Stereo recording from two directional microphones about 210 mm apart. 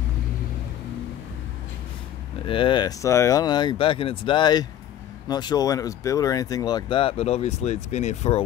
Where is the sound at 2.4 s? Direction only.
25° left (ahead or behind).